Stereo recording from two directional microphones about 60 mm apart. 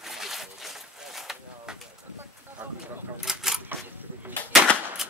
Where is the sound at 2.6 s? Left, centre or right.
Right.